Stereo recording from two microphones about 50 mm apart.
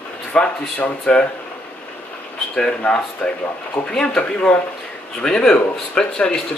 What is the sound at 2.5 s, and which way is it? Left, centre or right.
Speech, centre.